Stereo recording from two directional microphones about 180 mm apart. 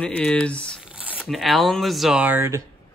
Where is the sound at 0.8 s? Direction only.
5° right (ahead or behind).